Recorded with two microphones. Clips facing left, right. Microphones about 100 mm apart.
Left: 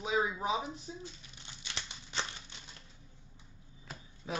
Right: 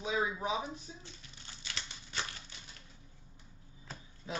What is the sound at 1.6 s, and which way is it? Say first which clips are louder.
Scissors: left 1 dB; 20° left (ahead or behind).